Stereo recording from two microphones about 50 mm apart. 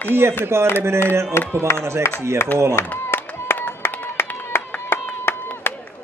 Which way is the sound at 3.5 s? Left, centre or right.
Left.